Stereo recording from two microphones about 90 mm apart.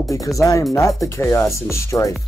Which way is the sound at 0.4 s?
35° left (ahead or behind).